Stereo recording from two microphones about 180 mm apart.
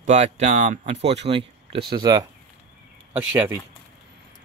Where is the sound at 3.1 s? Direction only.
10° right (ahead or behind).